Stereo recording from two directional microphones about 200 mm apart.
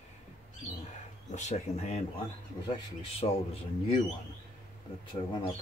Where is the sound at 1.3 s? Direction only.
35° left (ahead or behind).